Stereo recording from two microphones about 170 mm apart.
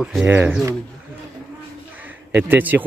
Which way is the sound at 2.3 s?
10° right (ahead or behind).